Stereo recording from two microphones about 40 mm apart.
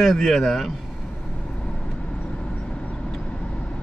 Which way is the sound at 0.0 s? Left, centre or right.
Centre.